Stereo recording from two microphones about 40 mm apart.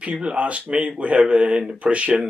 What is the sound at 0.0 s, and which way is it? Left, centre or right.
Speech, right.